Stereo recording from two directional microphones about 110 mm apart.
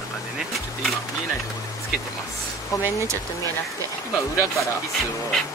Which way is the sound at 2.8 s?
25° right (ahead or behind).